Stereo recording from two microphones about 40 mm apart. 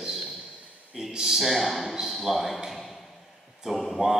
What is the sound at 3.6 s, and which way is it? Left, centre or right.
Speech, centre.